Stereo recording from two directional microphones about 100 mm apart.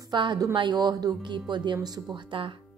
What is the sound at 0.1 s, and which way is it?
A woman's voice, 50° right (ahead or behind).